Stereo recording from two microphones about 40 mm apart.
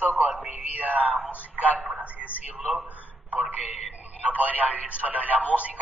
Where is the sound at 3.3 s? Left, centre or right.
Right.